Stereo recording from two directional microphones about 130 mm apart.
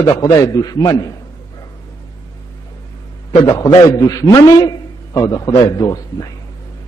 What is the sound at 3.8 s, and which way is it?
A man's voice, 30° left (ahead or behind).